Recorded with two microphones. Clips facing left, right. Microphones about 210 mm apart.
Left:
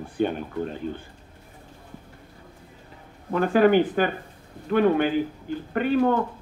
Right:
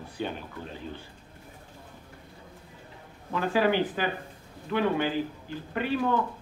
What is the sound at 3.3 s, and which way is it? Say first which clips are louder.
Speech: left 7 dB; 50° left (ahead or behind).